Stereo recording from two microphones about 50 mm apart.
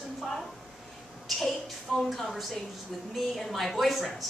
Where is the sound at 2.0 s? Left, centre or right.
Centre.